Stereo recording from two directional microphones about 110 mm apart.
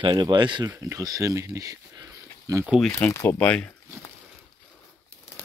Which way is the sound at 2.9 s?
25° left (ahead or behind).